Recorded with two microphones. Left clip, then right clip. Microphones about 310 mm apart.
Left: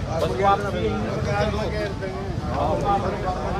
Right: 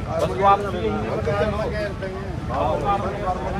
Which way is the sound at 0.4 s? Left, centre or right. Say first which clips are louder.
Right 3 dB; right.